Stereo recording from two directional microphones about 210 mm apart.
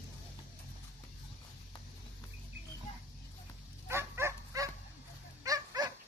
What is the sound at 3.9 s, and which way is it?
Dog, 10° right (ahead or behind).